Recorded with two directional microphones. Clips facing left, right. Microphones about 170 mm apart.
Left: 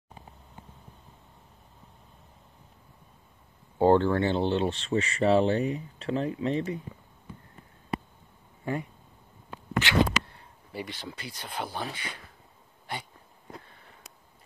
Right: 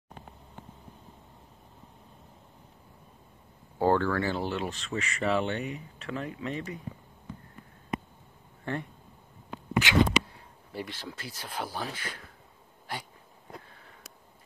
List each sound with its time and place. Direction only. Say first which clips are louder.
3.7 s speech: left 4 dB; 20° left (ahead or behind)
9.8 s a sound: right 1 dB; 10° right (ahead or behind)
10.7 s speech: left 1 dB; centre (ahead or behind)